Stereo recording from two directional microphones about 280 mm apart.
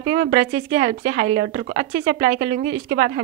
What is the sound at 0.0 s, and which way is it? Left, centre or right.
A woman's voice, right.